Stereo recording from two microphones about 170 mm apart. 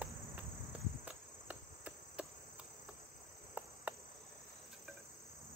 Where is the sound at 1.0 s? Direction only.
5° right (ahead or behind).